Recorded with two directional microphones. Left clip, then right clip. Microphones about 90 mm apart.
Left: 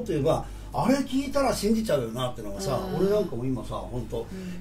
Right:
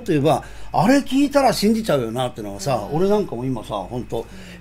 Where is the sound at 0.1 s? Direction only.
45° right (ahead or behind).